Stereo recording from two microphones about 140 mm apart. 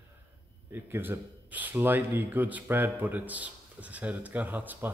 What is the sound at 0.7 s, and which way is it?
Speech, 15° right (ahead or behind).